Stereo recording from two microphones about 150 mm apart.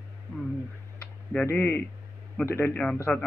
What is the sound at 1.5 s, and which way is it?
Speech, 15° left (ahead or behind).